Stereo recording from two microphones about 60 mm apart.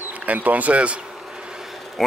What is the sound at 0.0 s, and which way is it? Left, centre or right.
Speech, right.